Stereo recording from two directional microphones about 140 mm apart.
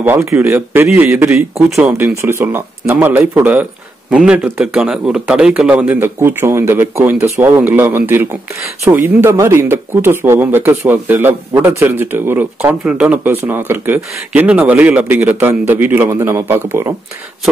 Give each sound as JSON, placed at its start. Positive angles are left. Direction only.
{"t": 0.0, "sound": "speech", "side_deg": -15}